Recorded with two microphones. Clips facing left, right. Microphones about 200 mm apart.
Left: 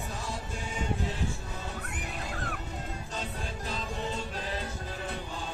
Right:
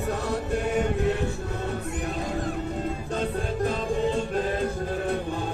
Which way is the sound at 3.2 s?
50° right (ahead or behind).